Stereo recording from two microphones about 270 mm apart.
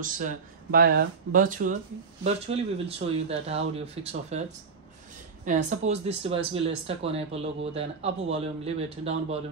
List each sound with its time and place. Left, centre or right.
0.0 s speech: right
5.4 s speech: right